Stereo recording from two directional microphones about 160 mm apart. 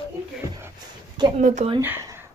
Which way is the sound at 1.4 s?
50° right (ahead or behind).